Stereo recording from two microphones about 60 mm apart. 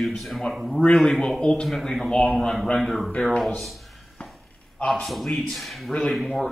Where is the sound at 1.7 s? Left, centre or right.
Centre.